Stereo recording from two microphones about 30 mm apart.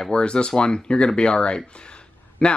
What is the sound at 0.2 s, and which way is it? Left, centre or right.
Speech, left.